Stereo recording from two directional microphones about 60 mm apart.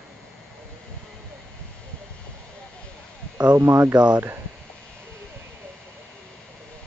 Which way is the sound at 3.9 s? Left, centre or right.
Right.